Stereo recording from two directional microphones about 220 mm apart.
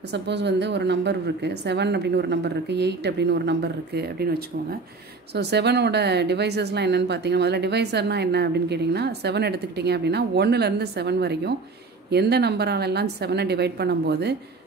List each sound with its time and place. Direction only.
0.1 s speech: 50° right (ahead or behind)